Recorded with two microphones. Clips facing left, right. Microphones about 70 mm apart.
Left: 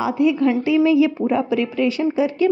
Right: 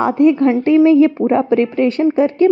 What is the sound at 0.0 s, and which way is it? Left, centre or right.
A woman's voice, right.